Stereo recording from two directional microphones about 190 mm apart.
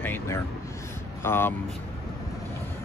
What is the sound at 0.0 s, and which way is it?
Vehicle, 10° left (ahead or behind).